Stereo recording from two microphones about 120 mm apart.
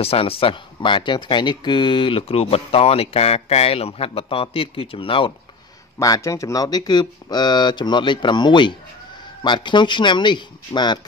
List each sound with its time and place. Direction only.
0.0 s speech: 55° left (ahead or behind)
5.9 s speech: 30° left (ahead or behind)